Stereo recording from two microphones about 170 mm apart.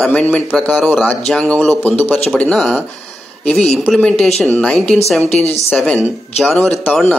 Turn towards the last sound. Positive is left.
turn(degrees=0)  # may be behind; listen again after turning